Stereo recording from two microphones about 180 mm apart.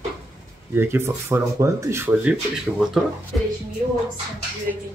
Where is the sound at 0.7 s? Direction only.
15° right (ahead or behind).